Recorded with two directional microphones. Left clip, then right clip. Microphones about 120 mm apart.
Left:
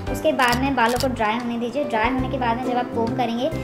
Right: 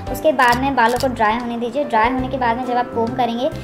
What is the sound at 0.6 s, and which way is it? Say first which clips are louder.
Speech: right 4 dB; 40° right (ahead or behind).